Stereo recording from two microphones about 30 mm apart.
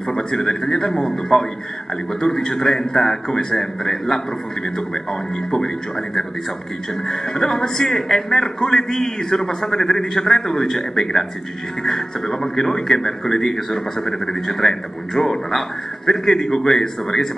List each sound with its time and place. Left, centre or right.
0.1 s a man's voice: left
5.5 s a man's voice: centre